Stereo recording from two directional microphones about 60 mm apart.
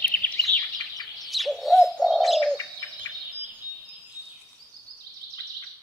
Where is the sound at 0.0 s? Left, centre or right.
Left.